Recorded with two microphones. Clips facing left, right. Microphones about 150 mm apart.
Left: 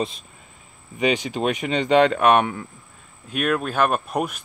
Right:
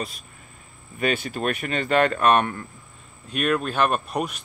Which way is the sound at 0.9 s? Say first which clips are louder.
Left 3 dB; 15° left (ahead or behind).